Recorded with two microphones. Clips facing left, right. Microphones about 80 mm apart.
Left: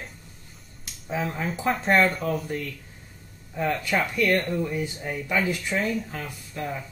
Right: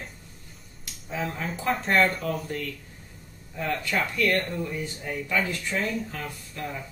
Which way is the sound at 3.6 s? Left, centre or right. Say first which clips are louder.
Left 3 dB; centre.